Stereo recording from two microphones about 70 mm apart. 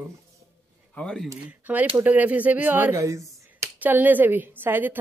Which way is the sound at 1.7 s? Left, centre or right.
Right.